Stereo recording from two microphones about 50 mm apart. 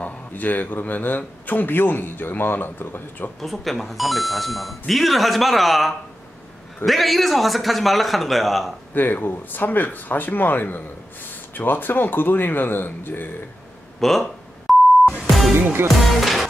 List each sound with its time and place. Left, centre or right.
0.0 s a man's voice: left
3.3 s speech: centre
8.9 s a man's voice: left
13.9 s speech: centre
14.7 s beep: centre
15.2 s music: centre